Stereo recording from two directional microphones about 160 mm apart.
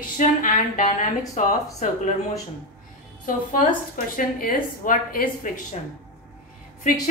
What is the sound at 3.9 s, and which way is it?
A woman's voice, 60° left (ahead or behind).